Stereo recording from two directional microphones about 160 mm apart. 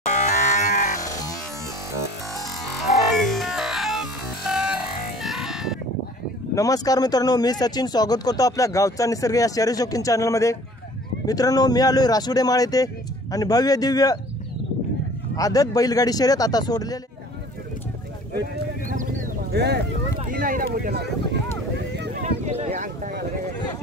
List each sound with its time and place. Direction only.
0.0 s music: 50° left (ahead or behind)
1.0 s music: 25° left (ahead or behind)
3.1 s music: centre (ahead or behind)
6.5 s speech: 20° left (ahead or behind)
15.3 s speech: 20° left (ahead or behind)
18.9 s a sound: 55° right (ahead or behind); by 19.8 s 90° right
20.2 s speech: 60° right (ahead or behind); by 21.4 s 85° right
22.2 s a sound: 45° right (ahead or behind)